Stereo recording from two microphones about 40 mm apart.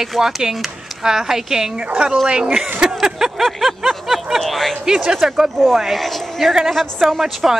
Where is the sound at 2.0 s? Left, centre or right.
Right.